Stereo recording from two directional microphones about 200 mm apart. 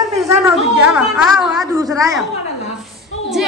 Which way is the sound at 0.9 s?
5° right (ahead or behind).